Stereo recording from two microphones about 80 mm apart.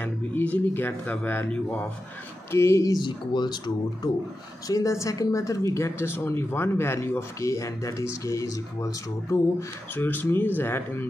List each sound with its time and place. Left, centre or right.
0.0 s speech: left
2.5 s speech: left
3.0 s speech: left
4.6 s speech: left
9.9 s speech: left